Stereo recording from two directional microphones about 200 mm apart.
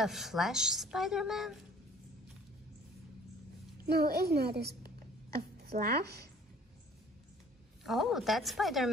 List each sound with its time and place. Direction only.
0.0 s a woman's voice: centre (ahead or behind)
3.9 s a woman's voice: 50° right (ahead or behind)
7.8 s a woman's voice: centre (ahead or behind)